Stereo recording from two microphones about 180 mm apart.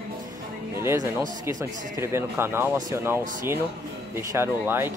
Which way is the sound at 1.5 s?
15° right (ahead or behind).